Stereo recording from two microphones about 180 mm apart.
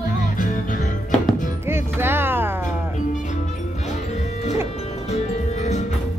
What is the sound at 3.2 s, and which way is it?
Music, 40° left (ahead or behind).